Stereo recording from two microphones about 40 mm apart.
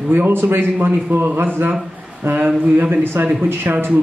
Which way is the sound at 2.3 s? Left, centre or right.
Right.